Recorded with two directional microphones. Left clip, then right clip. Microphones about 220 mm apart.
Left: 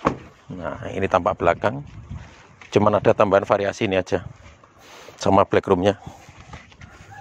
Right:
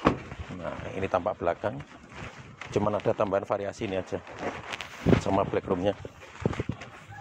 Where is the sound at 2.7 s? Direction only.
50° left (ahead or behind).